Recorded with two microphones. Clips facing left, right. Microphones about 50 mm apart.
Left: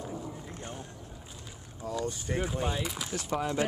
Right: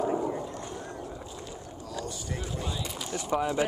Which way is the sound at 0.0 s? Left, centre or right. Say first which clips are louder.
Right 11 dB; right.